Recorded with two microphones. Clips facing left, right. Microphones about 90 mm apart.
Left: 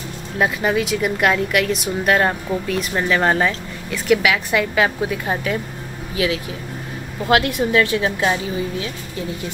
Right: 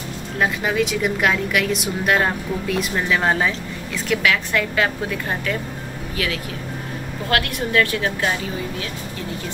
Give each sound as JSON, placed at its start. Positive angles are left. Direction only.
{"t": 0.4, "sound": "a woman's voice", "side_deg": 5}